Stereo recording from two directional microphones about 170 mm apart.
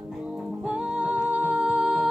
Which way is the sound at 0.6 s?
5° right (ahead or behind).